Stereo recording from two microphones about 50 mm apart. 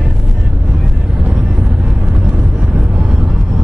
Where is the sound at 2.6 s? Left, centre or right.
Centre.